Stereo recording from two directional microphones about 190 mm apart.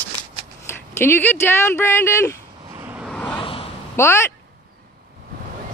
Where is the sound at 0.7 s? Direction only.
10° left (ahead or behind).